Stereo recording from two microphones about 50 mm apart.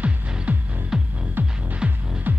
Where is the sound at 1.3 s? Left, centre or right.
Right.